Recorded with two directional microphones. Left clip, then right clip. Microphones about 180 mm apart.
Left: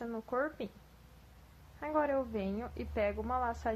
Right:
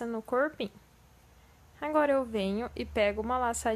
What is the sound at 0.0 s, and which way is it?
Speech, 50° right (ahead or behind).